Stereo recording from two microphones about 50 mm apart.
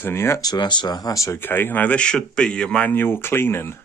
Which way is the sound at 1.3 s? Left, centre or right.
Left.